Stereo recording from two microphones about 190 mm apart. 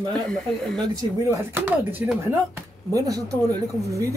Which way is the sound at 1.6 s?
10° right (ahead or behind).